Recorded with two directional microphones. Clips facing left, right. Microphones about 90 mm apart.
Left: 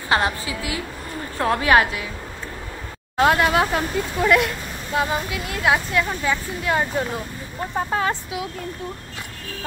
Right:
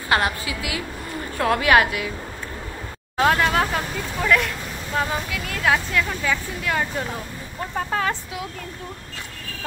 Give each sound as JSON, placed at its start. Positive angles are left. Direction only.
{"t": 0.1, "sound": "a woman's voice", "side_deg": 30}
{"t": 3.2, "sound": "speech", "side_deg": 5}